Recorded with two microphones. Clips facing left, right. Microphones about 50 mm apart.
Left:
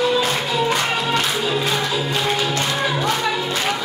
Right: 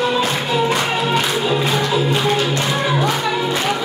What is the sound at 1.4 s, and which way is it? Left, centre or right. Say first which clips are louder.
Music: right 3 dB; centre.